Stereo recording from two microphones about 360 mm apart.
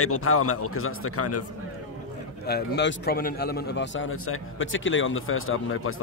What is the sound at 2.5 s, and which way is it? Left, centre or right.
A man's voice, left.